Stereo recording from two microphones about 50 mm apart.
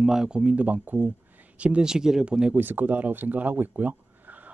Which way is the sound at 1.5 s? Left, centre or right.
Right.